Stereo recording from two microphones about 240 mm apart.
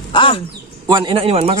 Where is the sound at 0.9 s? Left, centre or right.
Centre.